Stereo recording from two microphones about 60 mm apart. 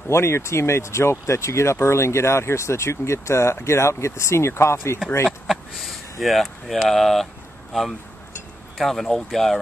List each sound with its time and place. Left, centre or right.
0.1 s speech: left
5.5 s speech: centre
8.7 s speech: centre